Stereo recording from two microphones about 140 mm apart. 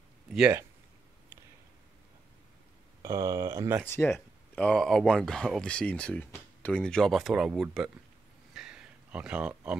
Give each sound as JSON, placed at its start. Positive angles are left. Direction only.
{"t": 0.3, "sound": "speech", "side_deg": -5}
{"t": 3.0, "sound": "speech", "side_deg": -20}
{"t": 3.8, "sound": "speech", "side_deg": 15}
{"t": 8.5, "sound": "a sound", "side_deg": -5}